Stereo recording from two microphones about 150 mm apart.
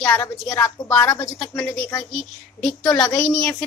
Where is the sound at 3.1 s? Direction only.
5° left (ahead or behind).